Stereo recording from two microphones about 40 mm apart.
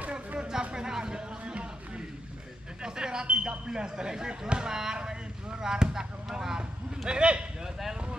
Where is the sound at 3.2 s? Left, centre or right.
Right.